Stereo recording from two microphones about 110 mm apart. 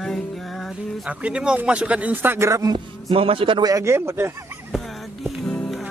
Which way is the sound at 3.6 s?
30° right (ahead or behind).